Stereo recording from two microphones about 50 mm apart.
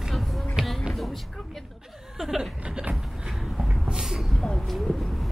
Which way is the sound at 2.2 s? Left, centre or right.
Centre.